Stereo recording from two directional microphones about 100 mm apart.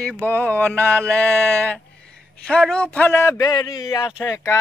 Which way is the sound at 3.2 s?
35° left (ahead or behind).